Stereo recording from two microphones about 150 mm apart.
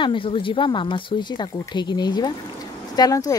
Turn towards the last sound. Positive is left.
turn(degrees=25)  # may be behind; listen again after turning